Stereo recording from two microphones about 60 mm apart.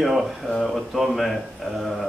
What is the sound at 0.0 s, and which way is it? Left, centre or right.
Speech, centre.